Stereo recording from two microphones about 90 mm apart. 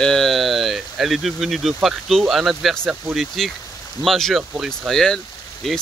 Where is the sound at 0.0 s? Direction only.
5° left (ahead or behind).